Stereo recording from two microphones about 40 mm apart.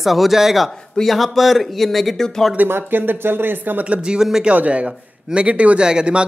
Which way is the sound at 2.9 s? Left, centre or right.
Right.